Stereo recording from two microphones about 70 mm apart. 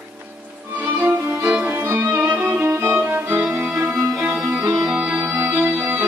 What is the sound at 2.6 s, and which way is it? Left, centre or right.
Violin, right.